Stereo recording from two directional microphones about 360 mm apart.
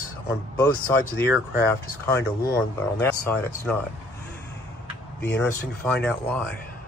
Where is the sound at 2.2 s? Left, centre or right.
Left.